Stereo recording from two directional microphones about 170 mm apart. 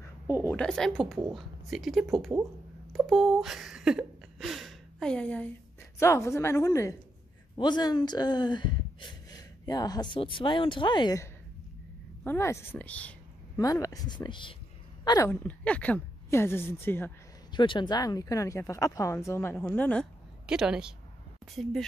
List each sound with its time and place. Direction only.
0.5 s speech: 5° left (ahead or behind); by 11.2 s 25° left (ahead or behind)
12.3 s speech: 15° left (ahead or behind)
13.6 s speech: 20° left (ahead or behind)
15.4 s speech: 10° left (ahead or behind)
17.5 s speech: 25° left (ahead or behind); by 20.1 s 10° left (ahead or behind)
20.4 s speech: 5° right (ahead or behind)